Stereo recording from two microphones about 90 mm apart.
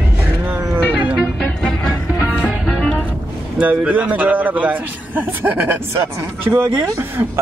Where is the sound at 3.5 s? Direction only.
15° right (ahead or behind).